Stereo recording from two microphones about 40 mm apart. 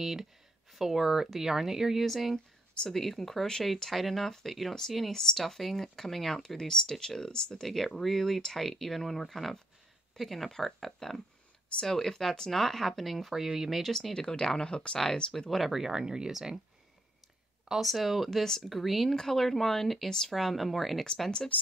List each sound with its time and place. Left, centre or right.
0.0 s speech: centre
2.3 s a sound: left
2.9 s speech: centre
7.6 s speech: centre
13.3 s speech: centre
14.1 s speech: left
15.3 s speech: centre
15.6 s speech: centre
17.8 s speech: centre
20.3 s speech: centre
21.0 s speech: centre